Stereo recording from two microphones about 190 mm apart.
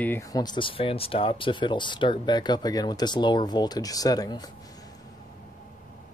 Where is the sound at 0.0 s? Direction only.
15° left (ahead or behind).